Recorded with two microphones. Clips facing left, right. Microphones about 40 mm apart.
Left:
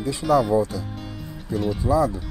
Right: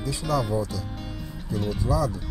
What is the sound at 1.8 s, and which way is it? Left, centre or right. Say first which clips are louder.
Speech: left 6 dB; left.